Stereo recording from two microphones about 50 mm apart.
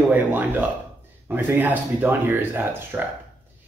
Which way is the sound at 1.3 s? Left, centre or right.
Right.